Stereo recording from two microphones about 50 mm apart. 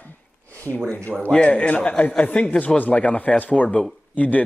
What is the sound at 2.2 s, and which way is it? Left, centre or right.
Speech, left.